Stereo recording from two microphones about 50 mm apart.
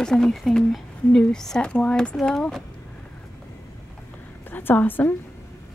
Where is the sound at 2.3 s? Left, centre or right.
Centre.